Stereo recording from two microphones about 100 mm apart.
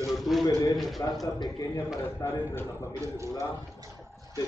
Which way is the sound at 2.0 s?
30° left (ahead or behind).